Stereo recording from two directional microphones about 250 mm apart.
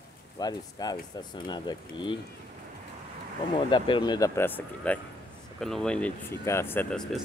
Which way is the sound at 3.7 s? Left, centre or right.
Centre.